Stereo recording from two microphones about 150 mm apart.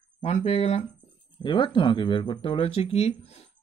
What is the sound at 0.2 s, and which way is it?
Speech, 45° left (ahead or behind).